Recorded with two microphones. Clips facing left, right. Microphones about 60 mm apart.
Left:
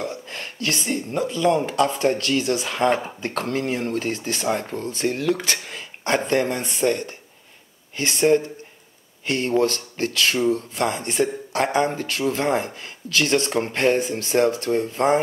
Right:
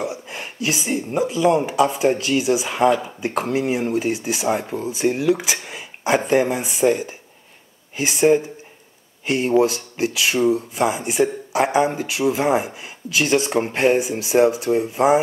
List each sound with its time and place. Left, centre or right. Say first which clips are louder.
0.0 s speech: right 2 dB; centre